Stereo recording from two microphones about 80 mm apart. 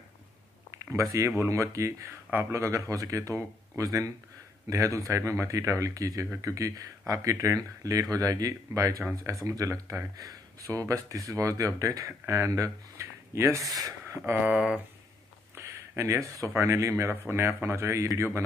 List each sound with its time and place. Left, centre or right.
1.4 s speech: right
14.4 s speech: centre
15.5 s speech: right